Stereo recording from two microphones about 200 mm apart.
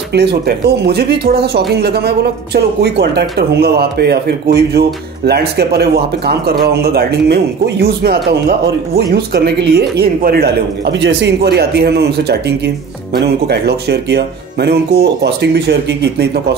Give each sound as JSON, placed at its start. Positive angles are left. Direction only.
{"t": 0.1, "sound": "speech", "side_deg": -55}